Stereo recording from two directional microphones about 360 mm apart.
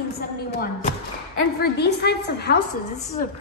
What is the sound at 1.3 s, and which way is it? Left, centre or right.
A woman's voice, left.